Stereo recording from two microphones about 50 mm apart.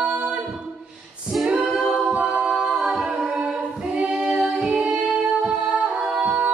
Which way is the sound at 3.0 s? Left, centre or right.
Right.